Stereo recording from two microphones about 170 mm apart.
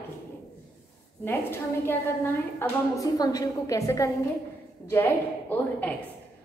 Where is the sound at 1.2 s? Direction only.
15° left (ahead or behind).